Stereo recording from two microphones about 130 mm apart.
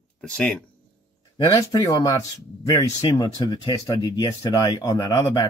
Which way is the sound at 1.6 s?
30° left (ahead or behind).